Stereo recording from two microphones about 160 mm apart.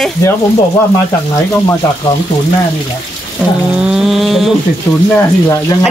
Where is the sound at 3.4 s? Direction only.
10° right (ahead or behind).